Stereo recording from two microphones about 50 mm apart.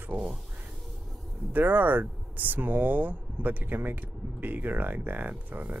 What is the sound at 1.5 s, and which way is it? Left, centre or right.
Speech, right.